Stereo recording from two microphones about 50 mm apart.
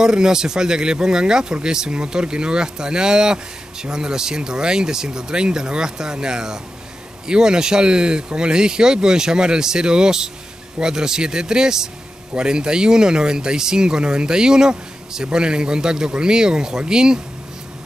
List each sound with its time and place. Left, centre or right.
0.0 s speech: centre